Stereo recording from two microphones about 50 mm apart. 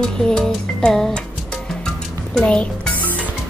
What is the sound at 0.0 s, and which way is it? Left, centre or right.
Speech, centre.